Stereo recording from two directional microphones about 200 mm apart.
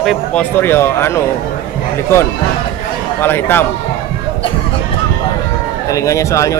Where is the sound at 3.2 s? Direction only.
10° left (ahead or behind).